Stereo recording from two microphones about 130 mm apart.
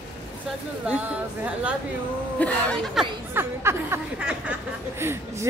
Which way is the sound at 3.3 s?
20° right (ahead or behind).